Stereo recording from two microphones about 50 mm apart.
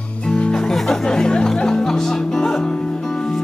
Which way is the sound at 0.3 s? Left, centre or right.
Centre.